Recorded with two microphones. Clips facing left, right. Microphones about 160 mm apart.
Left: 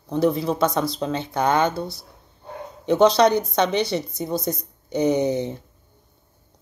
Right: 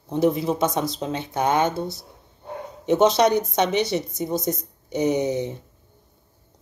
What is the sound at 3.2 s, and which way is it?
Speech, 15° right (ahead or behind).